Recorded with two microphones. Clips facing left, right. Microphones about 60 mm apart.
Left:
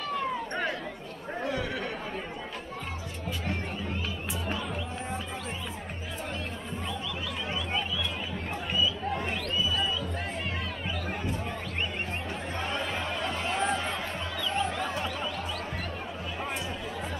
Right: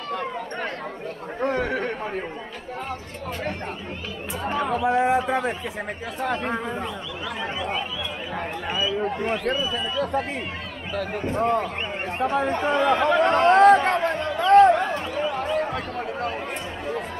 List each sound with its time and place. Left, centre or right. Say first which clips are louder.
0.1 s a sound: right 3 dB; right
1.4 s speech: right 8 dB; right
4.6 s speech: right 14 dB; right
9.5 s speech: right 4 dB; right
12.4 s speech: right 12 dB; right
14.0 s music: right 11 dB; right
14.5 s a sound: right 18 dB; right
15.3 s music: right 11 dB; right
15.6 s a sound: right 8 dB; right